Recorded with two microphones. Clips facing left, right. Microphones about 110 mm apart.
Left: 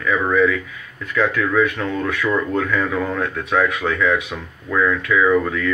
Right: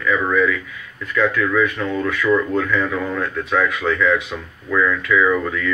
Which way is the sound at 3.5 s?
30° left (ahead or behind).